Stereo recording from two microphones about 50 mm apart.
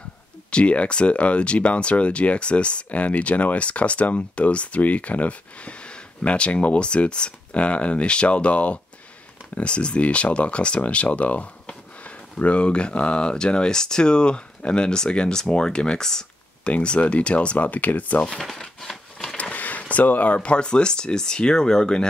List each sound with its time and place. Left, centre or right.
0.5 s speech: left
16.6 s speech: left
18.6 s a sound: centre
19.5 s speech: left; by 22.0 s centre